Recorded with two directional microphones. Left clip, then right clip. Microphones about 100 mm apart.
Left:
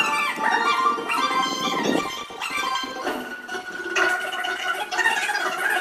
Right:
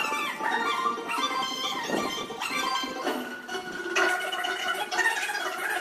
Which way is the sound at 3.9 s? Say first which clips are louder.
Left 4 dB; 10° right (ahead or behind).